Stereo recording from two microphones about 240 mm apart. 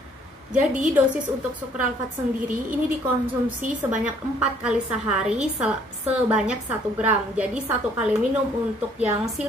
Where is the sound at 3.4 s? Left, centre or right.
Centre.